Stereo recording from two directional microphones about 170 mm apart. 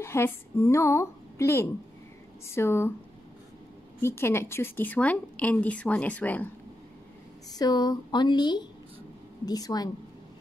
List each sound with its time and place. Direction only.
0.0 s a woman's voice: 15° left (ahead or behind)
4.0 s a woman's voice: 15° left (ahead or behind)
7.5 s speech: 25° left (ahead or behind)